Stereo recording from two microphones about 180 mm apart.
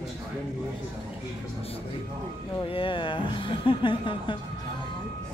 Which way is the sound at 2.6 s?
30° left (ahead or behind).